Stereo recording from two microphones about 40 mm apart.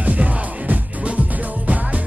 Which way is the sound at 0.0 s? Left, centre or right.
Right.